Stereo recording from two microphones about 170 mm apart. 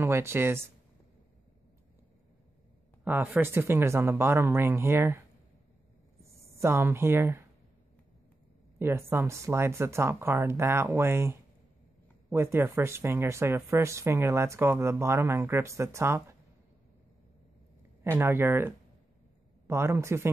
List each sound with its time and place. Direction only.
0.0 s speech: 15° right (ahead or behind)
3.0 s speech: 10° right (ahead or behind)
6.6 s speech: 15° right (ahead or behind)
8.7 s speech: 15° right (ahead or behind)
18.1 s speech: 15° right (ahead or behind)
19.7 s speech: 15° right (ahead or behind)